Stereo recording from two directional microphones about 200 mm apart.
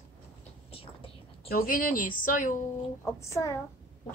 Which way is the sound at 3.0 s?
15° left (ahead or behind).